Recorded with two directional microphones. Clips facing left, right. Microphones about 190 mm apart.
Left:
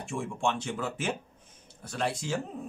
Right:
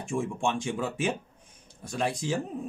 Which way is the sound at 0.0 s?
15° right (ahead or behind).